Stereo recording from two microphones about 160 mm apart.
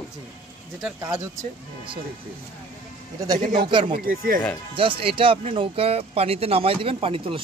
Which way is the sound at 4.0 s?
60° right (ahead or behind).